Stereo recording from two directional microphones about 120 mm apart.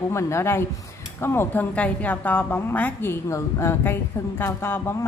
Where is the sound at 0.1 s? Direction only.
25° left (ahead or behind).